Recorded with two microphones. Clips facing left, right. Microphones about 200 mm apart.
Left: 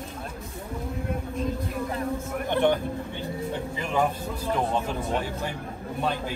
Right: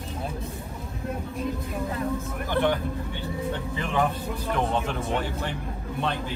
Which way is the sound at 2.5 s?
15° left (ahead or behind).